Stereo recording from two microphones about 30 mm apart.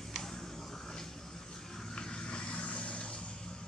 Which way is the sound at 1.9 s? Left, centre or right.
Left.